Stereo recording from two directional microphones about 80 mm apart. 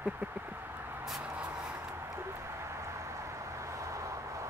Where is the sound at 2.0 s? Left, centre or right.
Right.